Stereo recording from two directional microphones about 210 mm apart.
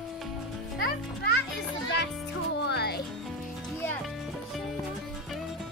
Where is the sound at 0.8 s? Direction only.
50° left (ahead or behind).